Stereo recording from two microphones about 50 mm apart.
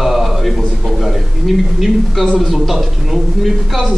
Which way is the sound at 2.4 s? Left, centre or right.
Centre.